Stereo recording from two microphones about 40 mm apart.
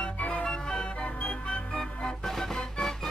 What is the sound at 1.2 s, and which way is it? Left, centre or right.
Music, left.